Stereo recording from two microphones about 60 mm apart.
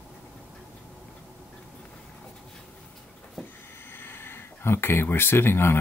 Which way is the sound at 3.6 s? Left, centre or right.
Left.